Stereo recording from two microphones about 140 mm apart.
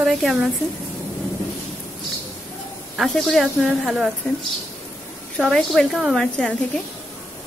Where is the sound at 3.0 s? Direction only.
Centre (ahead or behind).